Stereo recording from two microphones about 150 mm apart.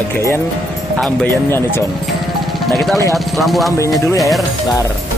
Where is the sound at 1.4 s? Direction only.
15° left (ahead or behind).